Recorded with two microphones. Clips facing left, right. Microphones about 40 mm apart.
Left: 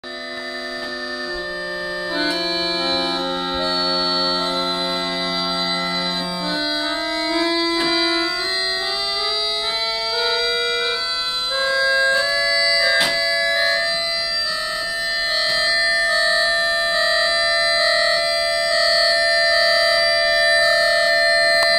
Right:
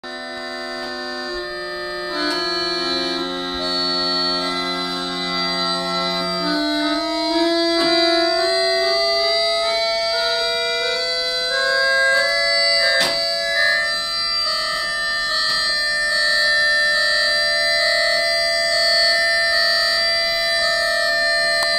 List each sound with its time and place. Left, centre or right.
6.5 s music: left
11.5 s music: left
12.5 s music: centre
15.7 s music: left
16.0 s music: left